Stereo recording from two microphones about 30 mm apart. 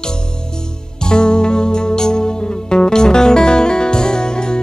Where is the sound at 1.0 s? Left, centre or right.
Left.